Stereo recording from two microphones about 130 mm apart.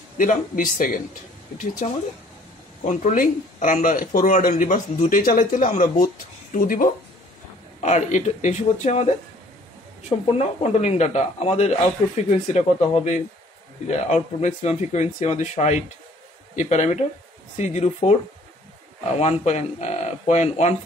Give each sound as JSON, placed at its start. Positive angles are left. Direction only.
{"t": 0.2, "sound": "speech", "side_deg": 90}
{"t": 1.8, "sound": "speech", "side_deg": 70}
{"t": 6.5, "sound": "speech", "side_deg": 90}
{"t": 7.8, "sound": "speech", "side_deg": 65}
{"t": 19.4, "sound": "speech", "side_deg": 60}